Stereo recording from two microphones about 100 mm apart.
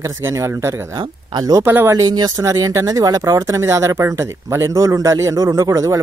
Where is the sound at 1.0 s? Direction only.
40° right (ahead or behind).